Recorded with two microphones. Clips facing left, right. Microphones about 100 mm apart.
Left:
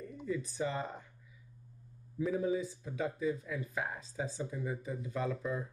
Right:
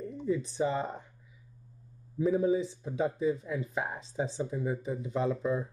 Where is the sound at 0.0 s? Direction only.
25° right (ahead or behind).